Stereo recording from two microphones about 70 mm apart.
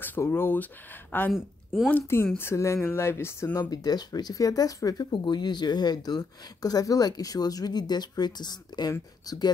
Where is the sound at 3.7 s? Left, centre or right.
Left.